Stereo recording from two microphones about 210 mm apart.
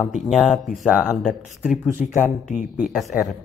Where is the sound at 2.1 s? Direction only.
40° left (ahead or behind).